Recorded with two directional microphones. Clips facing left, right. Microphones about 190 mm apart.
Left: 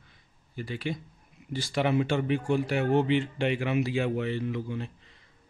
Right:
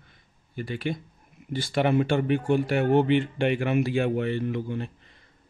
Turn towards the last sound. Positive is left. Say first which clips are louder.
# right 3 dB
turn(degrees=-55)  # may be behind; listen again after turning